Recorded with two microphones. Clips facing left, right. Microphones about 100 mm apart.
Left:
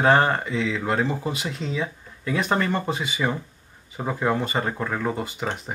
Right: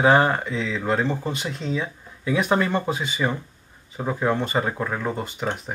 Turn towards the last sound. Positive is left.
turn(degrees=0)  # may be behind; listen again after turning